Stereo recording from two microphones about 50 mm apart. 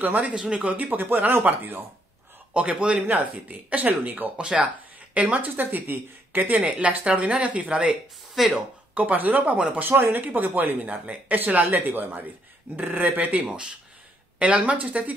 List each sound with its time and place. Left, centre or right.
0.0 s speech: right
0.4 s speech: centre
1.0 s speech: right
2.5 s speech: right
4.5 s speech: centre
5.1 s speech: right
5.6 s speech: right; by 8.0 s centre
8.4 s speech: centre
8.9 s speech: right
9.8 s speech: right
14.6 s speech: right